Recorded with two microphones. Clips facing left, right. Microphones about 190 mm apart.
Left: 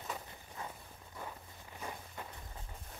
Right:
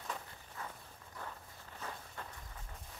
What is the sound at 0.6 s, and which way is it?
Walk, 15° left (ahead or behind).